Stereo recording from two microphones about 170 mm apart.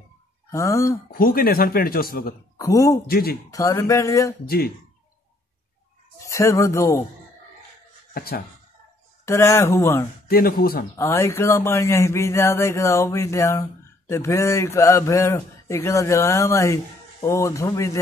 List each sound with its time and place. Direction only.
0.5 s speech: 15° left (ahead or behind)
1.1 s speech: 60° left (ahead or behind)
2.5 s speech: 20° left (ahead or behind)
3.1 s speech: 65° left (ahead or behind)
3.5 s speech: 20° left (ahead or behind)
4.5 s speech: 60° left (ahead or behind)
6.3 s speech: 15° left (ahead or behind)
8.1 s speech: 60° left (ahead or behind)
9.2 s speech: 15° left (ahead or behind)
10.2 s speech: 60° left (ahead or behind)
11.0 s speech: 15° left (ahead or behind)